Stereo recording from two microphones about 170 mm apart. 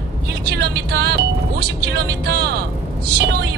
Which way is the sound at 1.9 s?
75° right (ahead or behind).